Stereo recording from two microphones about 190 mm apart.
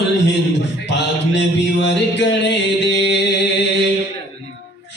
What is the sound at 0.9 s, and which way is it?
Mantra, 70° left (ahead or behind).